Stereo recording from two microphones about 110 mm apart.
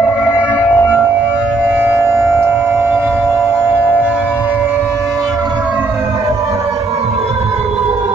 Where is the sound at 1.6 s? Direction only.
20° right (ahead or behind).